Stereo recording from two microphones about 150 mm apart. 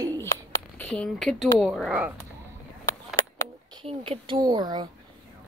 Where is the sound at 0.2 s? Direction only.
20° left (ahead or behind).